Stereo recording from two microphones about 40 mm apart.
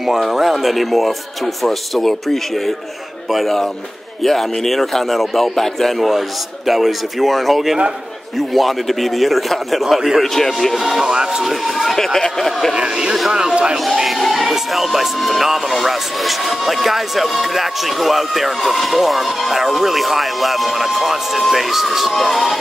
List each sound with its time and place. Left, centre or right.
0.0 s speech: centre
6.0 s speech: centre
10.2 s speech: centre
10.8 s speech: centre
11.1 s speech: centre
11.4 s speech: centre
11.9 s speech: centre
12.7 s speech: centre
14.0 s music: centre
14.5 s speech: centre